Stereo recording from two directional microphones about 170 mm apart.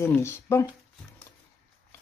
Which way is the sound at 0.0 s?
15° left (ahead or behind).